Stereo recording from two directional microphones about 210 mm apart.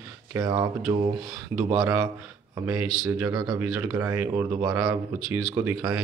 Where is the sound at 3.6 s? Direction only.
10° right (ahead or behind).